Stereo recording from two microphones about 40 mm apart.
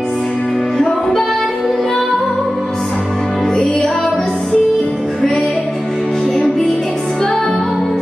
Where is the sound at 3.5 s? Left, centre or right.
Centre.